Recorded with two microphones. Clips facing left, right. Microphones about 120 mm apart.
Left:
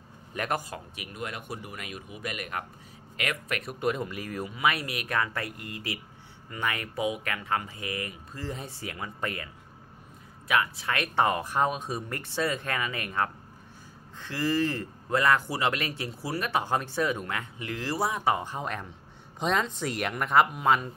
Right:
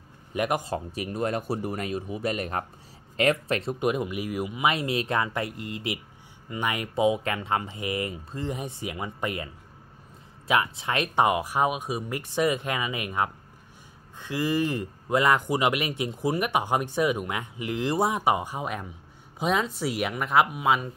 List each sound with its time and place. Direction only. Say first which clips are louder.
0.3 s a man's voice: right 4 dB; 15° right (ahead or behind)
0.7 s speech: right 10 dB; 35° right (ahead or behind)
3.8 s speech: right 3 dB; 15° right (ahead or behind)
10.5 s speech: right 2 dB; 20° right (ahead or behind); by 20.9 s 5° right (ahead or behind)